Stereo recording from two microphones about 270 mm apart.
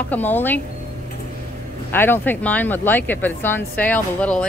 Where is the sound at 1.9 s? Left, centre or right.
Centre.